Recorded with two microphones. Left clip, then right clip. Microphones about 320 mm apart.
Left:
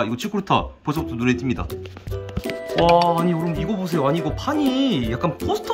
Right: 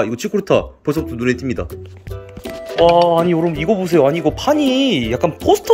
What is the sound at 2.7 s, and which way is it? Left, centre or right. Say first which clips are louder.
Speech: right 5 dB; centre.